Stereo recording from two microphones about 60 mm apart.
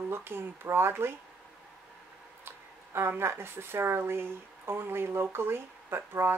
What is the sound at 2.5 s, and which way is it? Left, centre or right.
Speech, right.